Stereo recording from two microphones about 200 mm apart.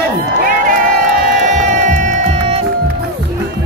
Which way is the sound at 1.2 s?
40° right (ahead or behind).